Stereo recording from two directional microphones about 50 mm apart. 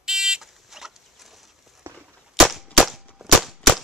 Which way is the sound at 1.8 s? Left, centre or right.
Right.